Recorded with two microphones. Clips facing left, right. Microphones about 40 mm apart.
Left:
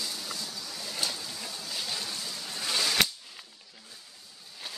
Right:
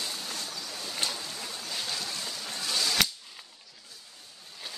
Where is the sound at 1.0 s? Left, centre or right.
Right.